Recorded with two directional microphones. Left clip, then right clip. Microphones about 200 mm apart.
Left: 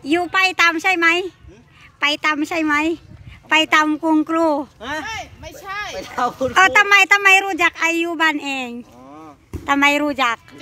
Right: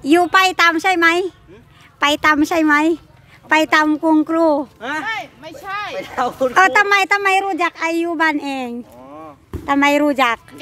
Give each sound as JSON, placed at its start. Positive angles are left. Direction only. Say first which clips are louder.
{"t": 0.0, "sound": "speech", "louder": "right 4 dB", "side_deg": -25}
{"t": 4.7, "sound": "speech", "louder": "right 3 dB", "side_deg": 60}
{"t": 5.0, "sound": "a sound", "louder": "right 4 dB", "side_deg": 35}
{"t": 6.0, "sound": "speech", "louder": "right 2 dB", "side_deg": 55}
{"t": 6.5, "sound": "speech", "louder": "left 1 dB", "side_deg": -10}